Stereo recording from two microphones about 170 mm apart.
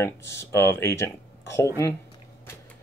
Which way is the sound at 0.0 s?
15° left (ahead or behind).